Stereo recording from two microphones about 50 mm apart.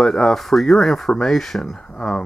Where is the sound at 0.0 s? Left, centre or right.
Centre.